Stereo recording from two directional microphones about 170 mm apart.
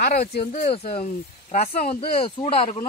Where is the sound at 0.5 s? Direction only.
55° left (ahead or behind).